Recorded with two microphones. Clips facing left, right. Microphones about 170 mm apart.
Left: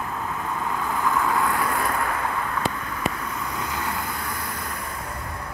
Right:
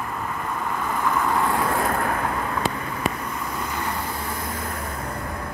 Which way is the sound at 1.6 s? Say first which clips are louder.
Right 2 dB; 50° right (ahead or behind).